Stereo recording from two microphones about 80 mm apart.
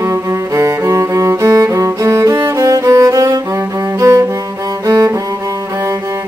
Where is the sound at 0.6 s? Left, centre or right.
Right.